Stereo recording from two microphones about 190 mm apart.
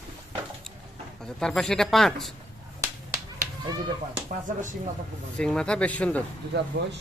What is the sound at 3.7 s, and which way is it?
Speech, 25° right (ahead or behind).